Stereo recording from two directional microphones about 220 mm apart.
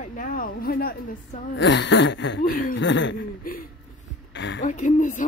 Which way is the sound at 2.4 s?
40° left (ahead or behind).